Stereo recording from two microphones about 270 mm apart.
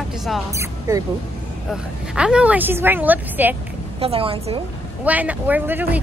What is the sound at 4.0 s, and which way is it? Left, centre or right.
Speech, right.